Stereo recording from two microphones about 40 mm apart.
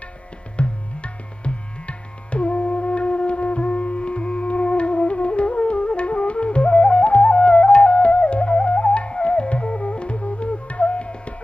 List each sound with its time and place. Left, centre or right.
0.6 s tabla: left